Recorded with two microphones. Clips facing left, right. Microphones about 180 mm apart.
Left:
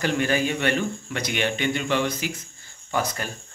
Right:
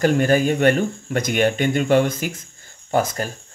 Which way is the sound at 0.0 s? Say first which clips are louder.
Right 6 dB; 45° right (ahead or behind).